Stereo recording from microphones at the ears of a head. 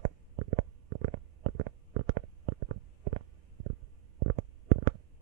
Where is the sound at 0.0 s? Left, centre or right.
Right.